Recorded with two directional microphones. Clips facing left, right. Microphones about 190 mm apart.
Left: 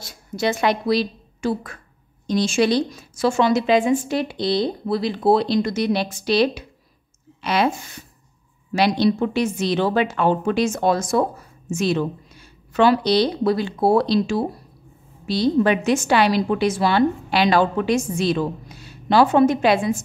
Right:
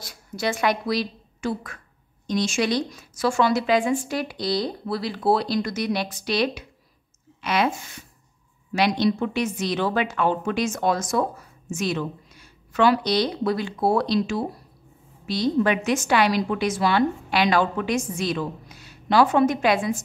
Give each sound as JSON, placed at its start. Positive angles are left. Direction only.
{"t": 0.0, "sound": "a woman's voice", "side_deg": 25}